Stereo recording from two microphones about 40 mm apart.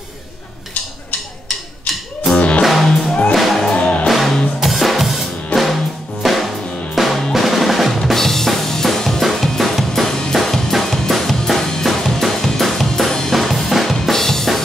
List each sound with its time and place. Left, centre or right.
2.3 s music: left
2.6 s music: centre
3.7 s music: left
4.1 s music: centre
5.5 s music: left
6.2 s music: centre
7.0 s drum: centre
9.2 s drum kit: centre
10.0 s drum kit: centre
10.3 s drum kit: centre
14.0 s drum: centre